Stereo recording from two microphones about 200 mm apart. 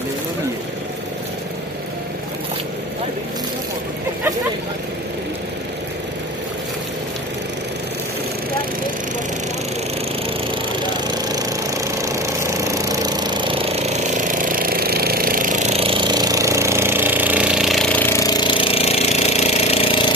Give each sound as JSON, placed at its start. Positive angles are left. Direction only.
{"t": 10.8, "sound": "jackhammer", "side_deg": -20}